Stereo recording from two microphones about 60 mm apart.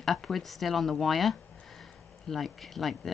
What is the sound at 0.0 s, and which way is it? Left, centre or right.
Speech, centre.